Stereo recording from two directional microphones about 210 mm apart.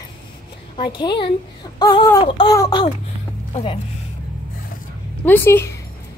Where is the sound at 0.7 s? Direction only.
20° left (ahead or behind).